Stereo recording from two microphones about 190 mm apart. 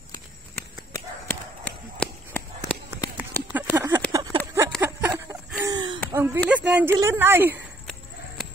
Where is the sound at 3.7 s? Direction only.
10° right (ahead or behind).